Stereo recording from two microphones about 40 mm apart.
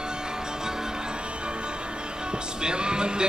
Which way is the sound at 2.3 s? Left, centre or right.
Right.